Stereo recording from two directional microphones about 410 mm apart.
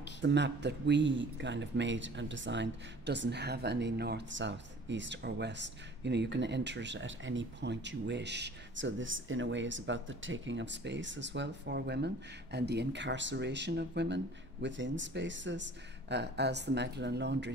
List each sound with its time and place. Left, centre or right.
0.2 s a man's voice: right